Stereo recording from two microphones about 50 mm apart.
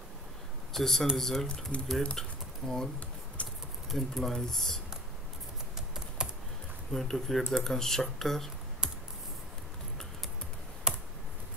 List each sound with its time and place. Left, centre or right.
0.7 s speech: centre
1.7 s speech: left
2.1 s pigeon: centre
3.4 s a sound: left
3.9 s speech: centre
5.8 s typing: centre
6.9 s speech: centre
8.8 s computer keyboard: centre
10.9 s computer keyboard: centre